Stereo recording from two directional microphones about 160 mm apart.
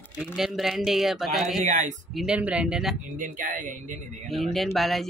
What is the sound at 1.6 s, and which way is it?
Speech, 50° right (ahead or behind).